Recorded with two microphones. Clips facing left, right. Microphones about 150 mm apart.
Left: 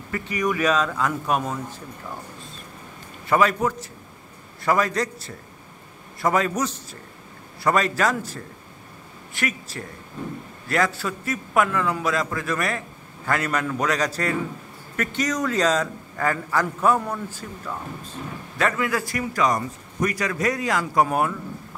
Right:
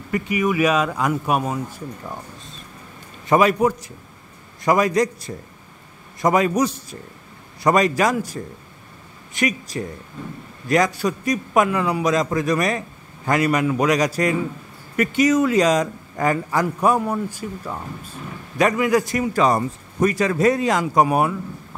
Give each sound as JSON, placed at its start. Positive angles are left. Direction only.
{"t": 0.1, "sound": "a man's voice", "side_deg": -10}
{"t": 3.3, "sound": "a man's voice", "side_deg": -15}